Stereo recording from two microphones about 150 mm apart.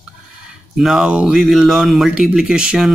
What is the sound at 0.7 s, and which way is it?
Speech, 5° right (ahead or behind).